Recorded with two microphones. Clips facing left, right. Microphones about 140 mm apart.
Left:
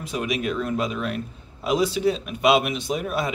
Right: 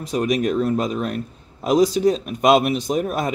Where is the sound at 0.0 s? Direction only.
40° right (ahead or behind).